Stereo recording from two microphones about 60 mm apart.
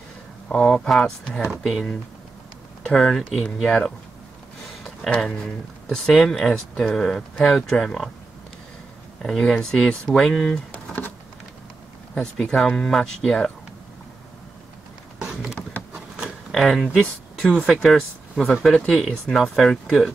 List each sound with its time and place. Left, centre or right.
0.5 s speech: centre
2.9 s speech: centre
9.2 s speech: centre
10.5 s a sound: centre
12.2 s speech: centre
12.5 s speech: centre
16.5 s speech: centre
17.5 s speech: centre
18.4 s speech: centre